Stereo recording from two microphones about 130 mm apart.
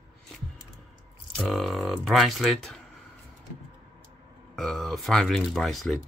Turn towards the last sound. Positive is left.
turn(degrees=0)  # may be behind; listen again after turning